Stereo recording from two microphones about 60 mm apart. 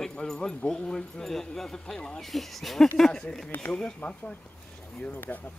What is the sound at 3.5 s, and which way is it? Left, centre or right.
Speech, left.